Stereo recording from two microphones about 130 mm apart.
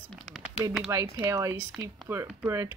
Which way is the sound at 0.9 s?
25° right (ahead or behind).